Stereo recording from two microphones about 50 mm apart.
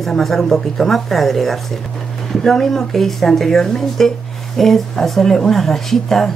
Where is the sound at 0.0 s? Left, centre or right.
Centre.